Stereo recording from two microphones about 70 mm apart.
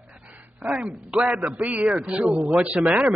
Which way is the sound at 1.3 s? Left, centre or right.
Right.